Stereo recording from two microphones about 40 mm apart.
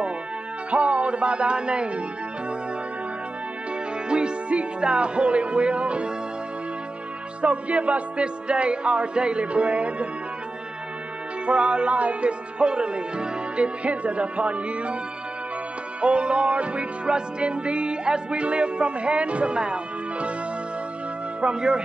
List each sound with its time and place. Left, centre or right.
0.7 s music: right
4.1 s music: right
7.4 s music: right
11.4 s speech: right
16.0 s music: right
21.4 s music: right